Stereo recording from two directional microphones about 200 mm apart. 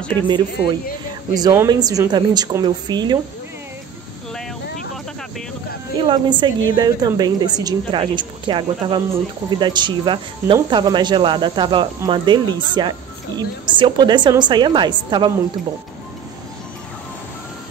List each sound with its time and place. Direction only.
1.3 s speech: 15° right (ahead or behind)
5.9 s speech: 25° right (ahead or behind)